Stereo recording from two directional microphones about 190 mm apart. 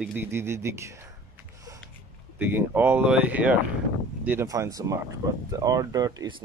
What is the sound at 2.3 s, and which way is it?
Speech, 10° right (ahead or behind).